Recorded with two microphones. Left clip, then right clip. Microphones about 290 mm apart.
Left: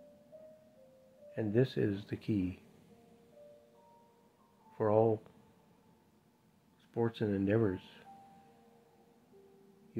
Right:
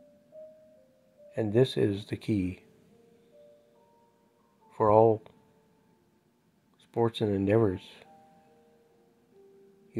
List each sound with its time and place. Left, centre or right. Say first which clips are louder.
1.3 s speech: right 7 dB; right
4.7 s a sound: right 8 dB; right
6.9 s speech: right 7 dB; right